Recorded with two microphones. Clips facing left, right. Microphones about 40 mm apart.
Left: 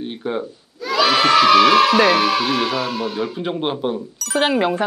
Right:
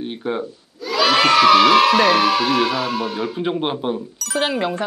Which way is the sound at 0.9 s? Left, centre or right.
Centre.